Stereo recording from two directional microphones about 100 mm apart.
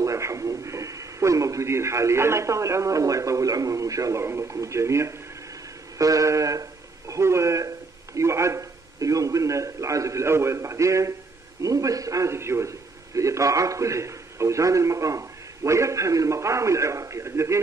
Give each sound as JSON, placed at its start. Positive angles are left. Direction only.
{"t": 0.0, "sound": "a man's voice", "side_deg": -30}